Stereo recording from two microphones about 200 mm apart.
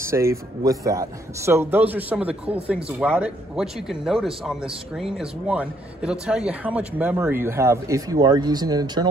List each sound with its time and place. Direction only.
0.0 s a man's voice: 15° right (ahead or behind)